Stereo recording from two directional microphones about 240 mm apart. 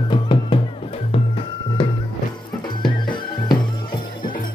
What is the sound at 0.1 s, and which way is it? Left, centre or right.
Music, centre.